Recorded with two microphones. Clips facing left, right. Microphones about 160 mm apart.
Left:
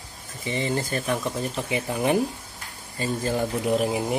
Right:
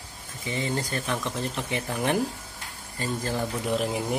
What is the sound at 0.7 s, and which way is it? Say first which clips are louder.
Speech: left 3 dB; 5° left (ahead or behind).